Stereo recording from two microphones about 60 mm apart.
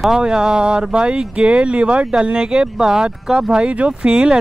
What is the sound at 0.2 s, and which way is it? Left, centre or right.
Speech, centre.